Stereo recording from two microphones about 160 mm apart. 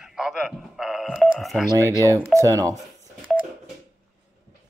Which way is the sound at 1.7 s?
20° right (ahead or behind).